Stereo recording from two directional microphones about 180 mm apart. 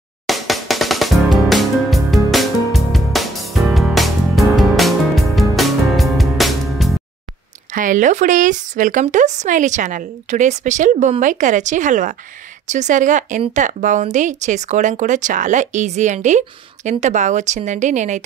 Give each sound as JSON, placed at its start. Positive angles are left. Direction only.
{"t": 0.3, "sound": "music", "side_deg": 0}
{"t": 7.7, "sound": "speech", "side_deg": -45}